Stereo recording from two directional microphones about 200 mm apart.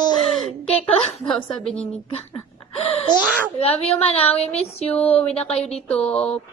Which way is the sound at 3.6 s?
30° left (ahead or behind).